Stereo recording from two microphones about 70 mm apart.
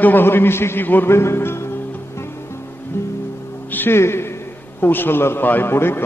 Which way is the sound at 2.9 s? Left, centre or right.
Left.